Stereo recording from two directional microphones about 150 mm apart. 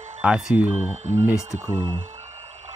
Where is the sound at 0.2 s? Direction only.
10° right (ahead or behind).